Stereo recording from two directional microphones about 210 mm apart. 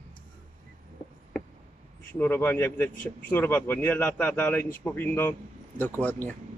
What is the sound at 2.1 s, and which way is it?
A man's voice, 10° left (ahead or behind).